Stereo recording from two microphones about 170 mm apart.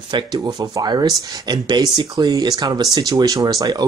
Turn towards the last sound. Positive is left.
turn(degrees=-20)  # may be behind; listen again after turning